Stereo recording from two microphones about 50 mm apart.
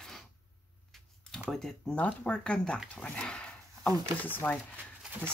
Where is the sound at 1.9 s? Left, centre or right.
Left.